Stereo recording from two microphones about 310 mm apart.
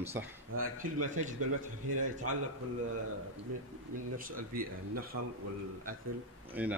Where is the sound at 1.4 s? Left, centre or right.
Right.